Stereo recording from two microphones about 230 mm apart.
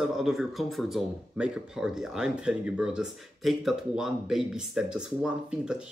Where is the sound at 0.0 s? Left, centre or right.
Centre.